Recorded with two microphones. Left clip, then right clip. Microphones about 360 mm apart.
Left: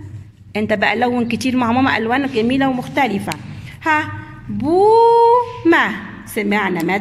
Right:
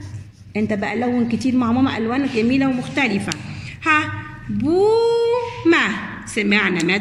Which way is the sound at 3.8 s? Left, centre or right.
Left.